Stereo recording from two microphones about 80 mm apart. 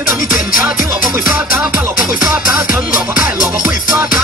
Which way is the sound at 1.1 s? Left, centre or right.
Right.